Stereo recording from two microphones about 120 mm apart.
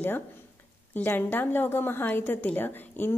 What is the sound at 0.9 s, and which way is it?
A woman's voice, 15° left (ahead or behind).